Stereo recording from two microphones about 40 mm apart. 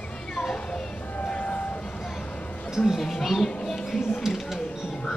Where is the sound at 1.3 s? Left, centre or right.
Left.